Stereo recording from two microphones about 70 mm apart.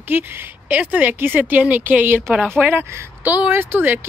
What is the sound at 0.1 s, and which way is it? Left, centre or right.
Speech, right.